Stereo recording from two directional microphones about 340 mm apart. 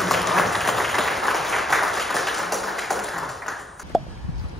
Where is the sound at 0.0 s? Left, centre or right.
Centre.